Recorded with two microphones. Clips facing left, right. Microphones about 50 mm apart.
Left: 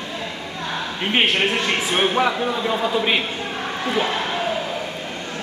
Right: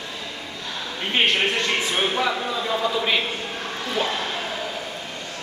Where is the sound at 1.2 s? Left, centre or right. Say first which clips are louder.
Even; centre.